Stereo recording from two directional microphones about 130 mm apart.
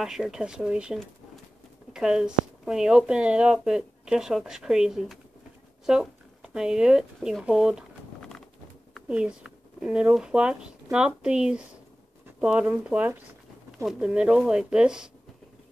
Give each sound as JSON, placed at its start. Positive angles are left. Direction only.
{"t": 0.0, "sound": "speech", "side_deg": -5}
{"t": 2.0, "sound": "speech", "side_deg": -5}
{"t": 8.2, "sound": "clip-clop", "side_deg": 5}
{"t": 9.1, "sound": "speech", "side_deg": -5}